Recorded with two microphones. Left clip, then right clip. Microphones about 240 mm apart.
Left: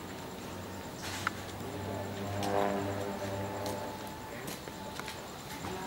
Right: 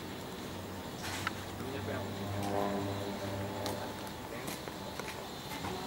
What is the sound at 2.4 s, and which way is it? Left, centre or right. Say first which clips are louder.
Music: left 4 dB; centre.